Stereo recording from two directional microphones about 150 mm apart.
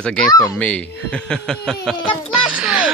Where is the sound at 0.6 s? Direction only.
10° left (ahead or behind).